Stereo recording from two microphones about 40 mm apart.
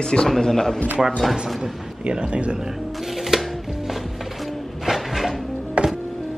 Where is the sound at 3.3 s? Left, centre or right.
Centre.